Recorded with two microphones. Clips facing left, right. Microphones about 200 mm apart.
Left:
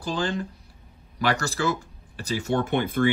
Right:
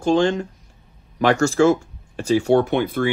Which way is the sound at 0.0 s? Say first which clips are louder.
Right 10 dB; 35° left (ahead or behind).